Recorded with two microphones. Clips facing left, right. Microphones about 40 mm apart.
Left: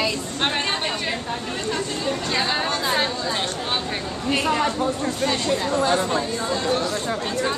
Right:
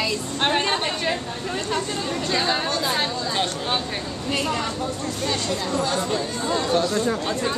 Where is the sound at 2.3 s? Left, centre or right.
Centre.